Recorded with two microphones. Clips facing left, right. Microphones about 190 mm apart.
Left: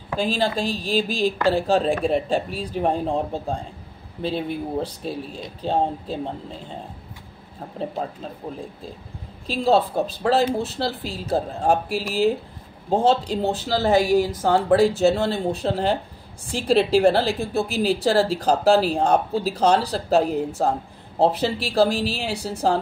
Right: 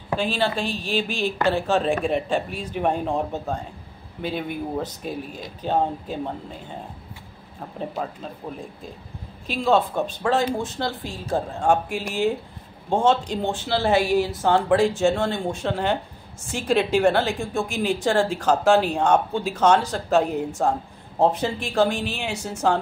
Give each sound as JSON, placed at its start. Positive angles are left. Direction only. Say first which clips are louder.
{"t": 0.1, "sound": "a woman's voice", "louder": "left 1 dB", "side_deg": 40}
{"t": 9.5, "sound": "a woman's voice", "louder": "left 1 dB", "side_deg": 35}